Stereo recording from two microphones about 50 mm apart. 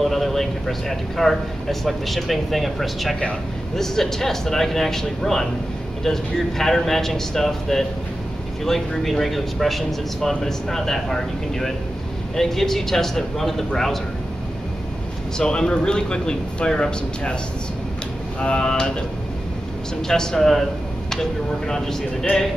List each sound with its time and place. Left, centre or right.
0.0 s a man's voice: centre
15.3 s a man's voice: centre
18.4 s a man's voice: centre
20.1 s a man's voice: centre